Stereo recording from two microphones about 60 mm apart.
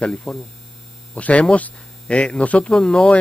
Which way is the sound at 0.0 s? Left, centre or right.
Centre.